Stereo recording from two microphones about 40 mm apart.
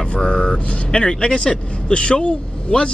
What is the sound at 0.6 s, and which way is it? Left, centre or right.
Speech, left.